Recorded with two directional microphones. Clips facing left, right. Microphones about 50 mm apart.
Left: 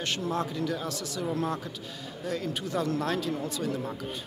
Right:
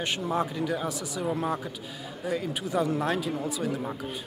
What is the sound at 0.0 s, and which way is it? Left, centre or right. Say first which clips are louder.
Speech: right 2 dB; centre.